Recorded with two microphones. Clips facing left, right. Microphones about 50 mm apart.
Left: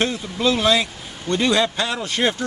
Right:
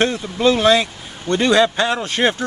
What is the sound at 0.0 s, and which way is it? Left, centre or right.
Speech, right.